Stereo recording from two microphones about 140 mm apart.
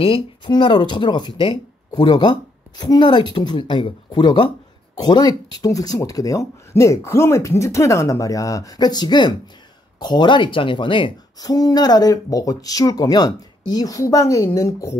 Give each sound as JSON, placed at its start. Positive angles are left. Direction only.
{"t": 0.0, "sound": "speech", "side_deg": 35}